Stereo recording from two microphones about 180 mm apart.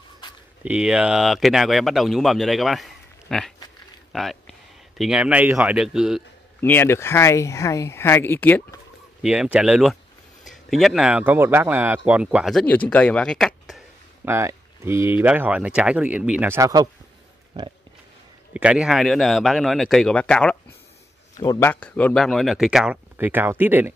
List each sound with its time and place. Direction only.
0.2 s a sound: 25° left (ahead or behind)
0.7 s speech: 5° right (ahead or behind)
6.6 s speech: 10° left (ahead or behind)
9.2 s speech: 5° right (ahead or behind)
14.2 s speech: 15° right (ahead or behind)
17.6 s pig: 25° right (ahead or behind)
18.5 s speech: 5° right (ahead or behind)
21.4 s speech: 15° left (ahead or behind); by 23.9 s 10° right (ahead or behind)